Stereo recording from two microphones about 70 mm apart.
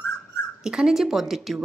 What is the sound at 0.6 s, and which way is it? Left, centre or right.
A woman's voice, centre.